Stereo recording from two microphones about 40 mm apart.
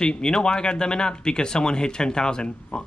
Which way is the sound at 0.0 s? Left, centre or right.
Centre.